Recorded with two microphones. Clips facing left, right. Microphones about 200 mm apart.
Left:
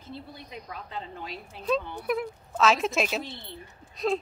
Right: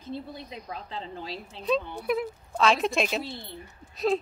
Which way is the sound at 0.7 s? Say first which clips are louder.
Right 1 dB; 30° right (ahead or behind).